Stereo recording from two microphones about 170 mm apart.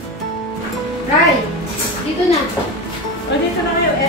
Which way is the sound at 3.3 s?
90° left.